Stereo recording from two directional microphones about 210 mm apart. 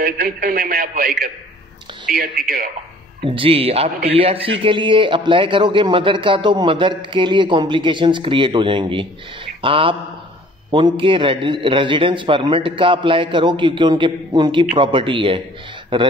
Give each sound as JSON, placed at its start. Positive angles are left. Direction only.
{"t": 0.0, "sound": "speech", "side_deg": -45}
{"t": 2.1, "sound": "speech", "side_deg": -45}
{"t": 3.3, "sound": "a man's voice", "side_deg": -25}